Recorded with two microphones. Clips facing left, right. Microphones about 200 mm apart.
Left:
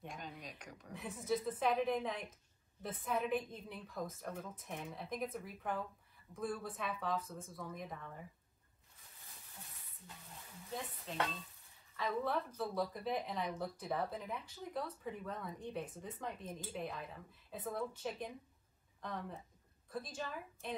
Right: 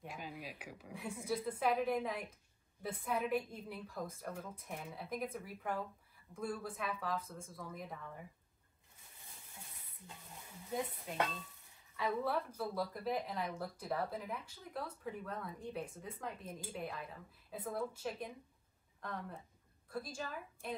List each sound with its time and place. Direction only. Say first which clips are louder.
0.0 s speech: right 2 dB; 5° right (ahead or behind)
11.1 s speech: right 2 dB; 10° right (ahead or behind)